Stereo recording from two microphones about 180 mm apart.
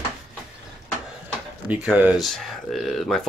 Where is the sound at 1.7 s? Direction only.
10° right (ahead or behind).